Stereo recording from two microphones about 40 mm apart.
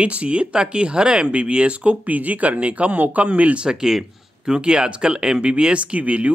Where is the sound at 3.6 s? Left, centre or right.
Centre.